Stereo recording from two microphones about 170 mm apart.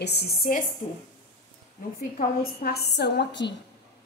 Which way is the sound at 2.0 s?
60° left (ahead or behind).